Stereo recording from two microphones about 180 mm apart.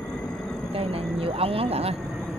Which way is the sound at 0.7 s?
30° right (ahead or behind).